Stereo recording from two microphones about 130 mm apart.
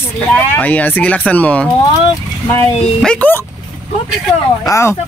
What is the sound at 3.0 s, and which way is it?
Speech, 10° left (ahead or behind).